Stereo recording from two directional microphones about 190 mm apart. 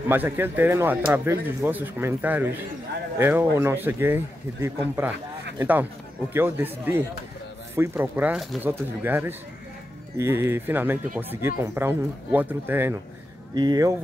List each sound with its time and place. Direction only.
0.1 s speech: 10° right (ahead or behind)